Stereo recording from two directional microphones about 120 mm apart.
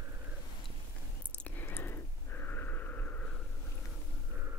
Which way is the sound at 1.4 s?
15° left (ahead or behind).